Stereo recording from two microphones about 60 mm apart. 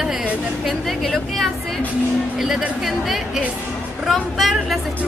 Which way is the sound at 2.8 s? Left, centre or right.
Centre.